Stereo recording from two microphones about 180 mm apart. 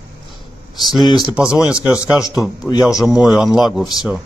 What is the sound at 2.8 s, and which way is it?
Speech, 5° right (ahead or behind).